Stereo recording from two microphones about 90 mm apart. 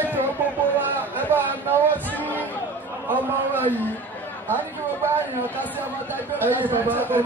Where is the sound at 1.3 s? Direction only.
25° right (ahead or behind).